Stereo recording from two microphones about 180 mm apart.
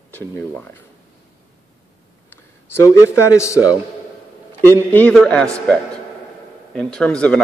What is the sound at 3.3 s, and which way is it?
Speech, 15° left (ahead or behind).